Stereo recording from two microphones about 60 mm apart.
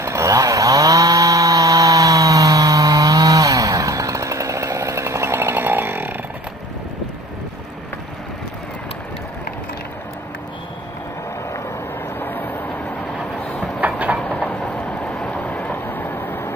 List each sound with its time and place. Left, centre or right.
0.0 s chainsaw: right
12.2 s train: left
13.7 s train: right
14.4 s vehicle: centre; by 16.5 s left